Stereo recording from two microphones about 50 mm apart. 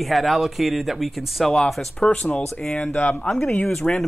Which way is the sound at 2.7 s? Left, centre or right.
Left.